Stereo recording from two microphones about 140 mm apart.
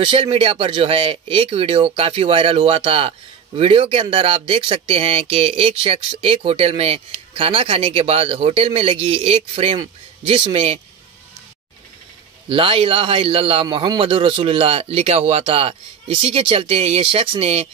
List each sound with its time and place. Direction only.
0.0 s speech: 40° right (ahead or behind)
12.4 s speech: 40° right (ahead or behind)